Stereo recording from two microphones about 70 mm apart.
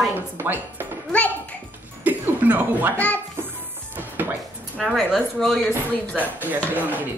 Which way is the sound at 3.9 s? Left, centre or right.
Right.